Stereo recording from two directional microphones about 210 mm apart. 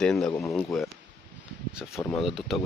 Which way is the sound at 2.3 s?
Centre (ahead or behind).